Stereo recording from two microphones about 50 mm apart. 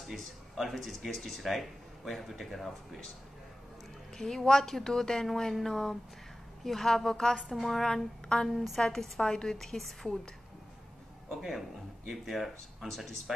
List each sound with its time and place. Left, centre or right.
0.0 s speech: centre
4.2 s speech: centre
7.8 s speech: centre
8.5 s speech: centre
12.1 s speech: centre